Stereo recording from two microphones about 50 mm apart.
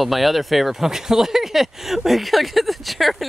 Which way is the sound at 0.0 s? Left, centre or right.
Centre.